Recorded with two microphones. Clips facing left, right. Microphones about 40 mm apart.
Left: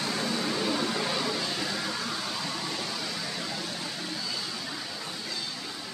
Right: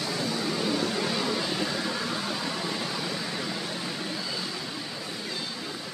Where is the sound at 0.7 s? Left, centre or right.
Centre.